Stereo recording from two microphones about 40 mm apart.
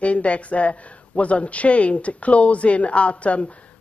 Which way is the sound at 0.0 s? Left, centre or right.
Left.